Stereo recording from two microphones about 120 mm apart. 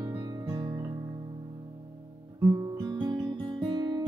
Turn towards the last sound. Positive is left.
turn(degrees=-35)  # may be behind; listen again after turning